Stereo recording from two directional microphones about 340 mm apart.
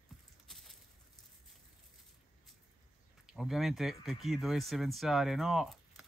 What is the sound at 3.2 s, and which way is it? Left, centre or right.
Speech, centre.